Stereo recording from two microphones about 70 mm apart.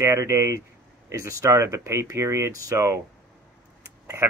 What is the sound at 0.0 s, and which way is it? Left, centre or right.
Speech, right.